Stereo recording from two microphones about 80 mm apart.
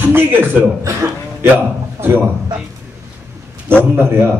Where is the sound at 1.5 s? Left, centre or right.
Right.